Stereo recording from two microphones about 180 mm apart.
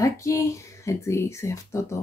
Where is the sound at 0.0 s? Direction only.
15° left (ahead or behind).